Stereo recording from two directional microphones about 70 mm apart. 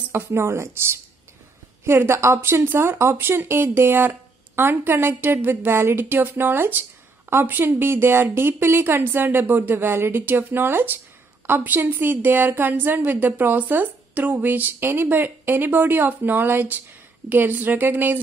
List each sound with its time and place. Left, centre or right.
0.1 s a woman's voice: right